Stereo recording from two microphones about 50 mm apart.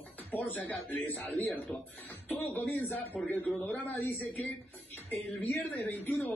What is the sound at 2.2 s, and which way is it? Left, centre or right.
A woman's voice, left.